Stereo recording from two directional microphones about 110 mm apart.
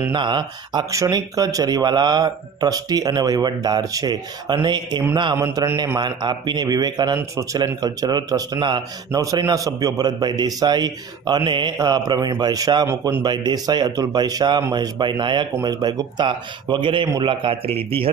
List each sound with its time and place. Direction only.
0.1 s a man's voice: 45° right (ahead or behind)
0.9 s a man's voice: 30° right (ahead or behind)
12.8 s a man's voice: 25° right (ahead or behind)
13.2 s a man's voice: 40° right (ahead or behind); by 18.1 s 60° right (ahead or behind)